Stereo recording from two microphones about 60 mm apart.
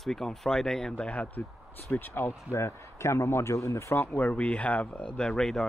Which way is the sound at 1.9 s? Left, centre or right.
Left.